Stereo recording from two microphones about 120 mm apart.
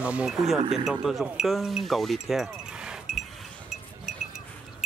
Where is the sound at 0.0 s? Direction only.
10° right (ahead or behind).